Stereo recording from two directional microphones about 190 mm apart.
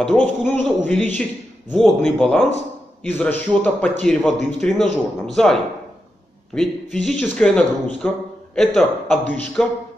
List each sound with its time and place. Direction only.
0.0 s a man's voice: centre (ahead or behind)